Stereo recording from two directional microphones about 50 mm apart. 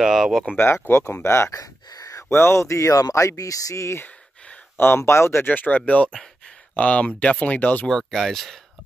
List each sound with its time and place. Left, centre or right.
0.0 s speech: centre
0.8 s speech: left
1.2 s speech: left
4.7 s speech: left
5.4 s speech: left
7.9 s speech: centre